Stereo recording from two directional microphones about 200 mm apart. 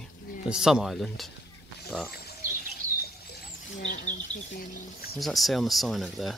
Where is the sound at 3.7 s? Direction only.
40° left (ahead or behind).